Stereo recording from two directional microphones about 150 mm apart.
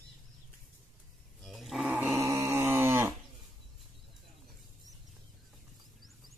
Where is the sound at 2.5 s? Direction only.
15° right (ahead or behind).